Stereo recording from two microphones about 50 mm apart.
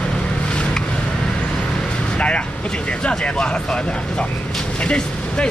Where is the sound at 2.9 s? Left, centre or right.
Left.